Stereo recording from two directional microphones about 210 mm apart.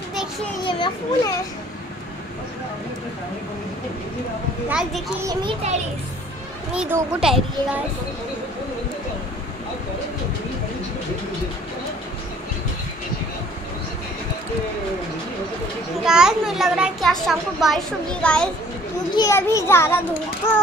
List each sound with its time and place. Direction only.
0.7 s a child's voice: 25° left (ahead or behind)
4.6 s a child's voice: 5° right (ahead or behind)
5.2 s a child's voice: 25° right (ahead or behind)
6.7 s a child's voice: 5° right (ahead or behind)
16.0 s a child's voice: 5° right (ahead or behind)